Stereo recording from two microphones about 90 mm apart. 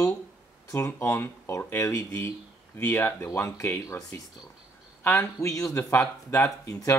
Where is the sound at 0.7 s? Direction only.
30° left (ahead or behind).